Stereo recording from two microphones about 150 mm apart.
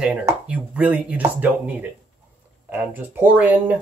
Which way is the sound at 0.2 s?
20° right (ahead or behind).